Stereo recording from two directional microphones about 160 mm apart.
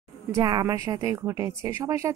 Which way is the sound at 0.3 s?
25° right (ahead or behind).